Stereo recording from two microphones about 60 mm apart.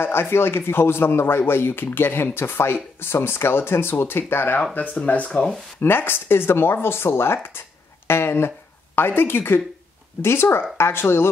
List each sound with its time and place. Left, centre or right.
0.0 s speech: left
5.8 s speech: left